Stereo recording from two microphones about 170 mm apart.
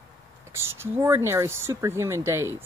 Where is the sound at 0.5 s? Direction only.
15° right (ahead or behind).